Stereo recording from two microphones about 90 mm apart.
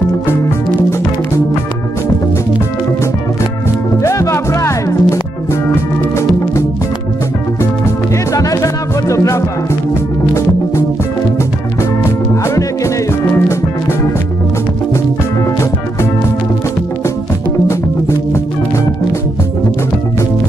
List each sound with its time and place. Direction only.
4.0 s music: 35° left (ahead or behind)
8.3 s music: 40° left (ahead or behind)
12.4 s music: 35° left (ahead or behind)